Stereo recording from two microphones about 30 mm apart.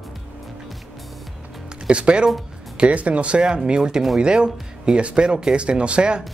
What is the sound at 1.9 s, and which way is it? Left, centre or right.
Speech, right.